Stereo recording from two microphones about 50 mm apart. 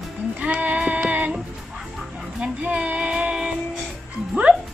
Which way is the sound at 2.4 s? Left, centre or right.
Right.